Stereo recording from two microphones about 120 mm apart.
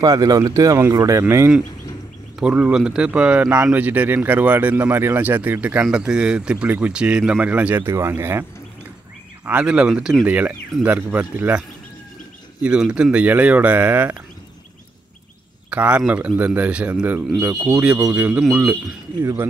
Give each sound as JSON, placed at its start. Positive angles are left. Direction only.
{"t": 0.0, "sound": "speech", "side_deg": -30}
{"t": 2.4, "sound": "speech", "side_deg": -10}
{"t": 12.6, "sound": "speech", "side_deg": -10}
{"t": 15.7, "sound": "speech", "side_deg": -10}